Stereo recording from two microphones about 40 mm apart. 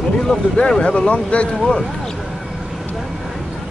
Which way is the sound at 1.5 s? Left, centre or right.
Centre.